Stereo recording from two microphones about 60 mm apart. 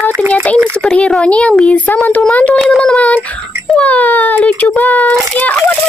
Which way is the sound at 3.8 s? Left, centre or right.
Left.